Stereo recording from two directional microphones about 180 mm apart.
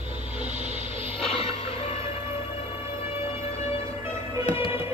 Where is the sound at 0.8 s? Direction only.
30° left (ahead or behind).